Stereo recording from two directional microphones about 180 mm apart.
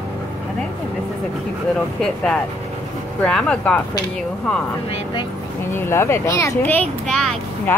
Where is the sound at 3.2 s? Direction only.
5° left (ahead or behind).